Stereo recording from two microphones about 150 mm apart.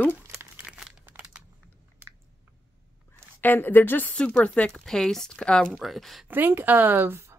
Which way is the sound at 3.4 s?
15° left (ahead or behind).